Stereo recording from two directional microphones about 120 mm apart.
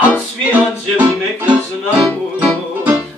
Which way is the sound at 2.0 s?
10° right (ahead or behind).